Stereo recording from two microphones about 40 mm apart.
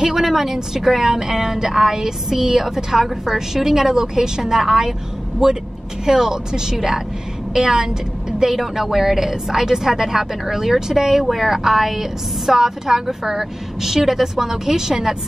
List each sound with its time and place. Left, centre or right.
0.0 s a woman's voice: centre